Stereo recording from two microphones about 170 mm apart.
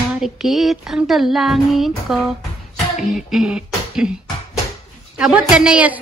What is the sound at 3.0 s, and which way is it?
Beatboxing, centre (ahead or behind).